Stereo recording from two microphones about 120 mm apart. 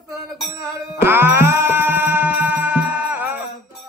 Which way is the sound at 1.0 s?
15° right (ahead or behind).